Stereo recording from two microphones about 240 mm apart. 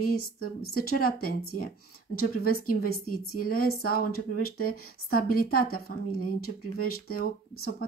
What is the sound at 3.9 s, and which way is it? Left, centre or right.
Speech, left.